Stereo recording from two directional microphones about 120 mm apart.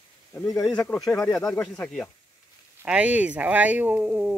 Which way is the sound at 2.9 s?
10° right (ahead or behind).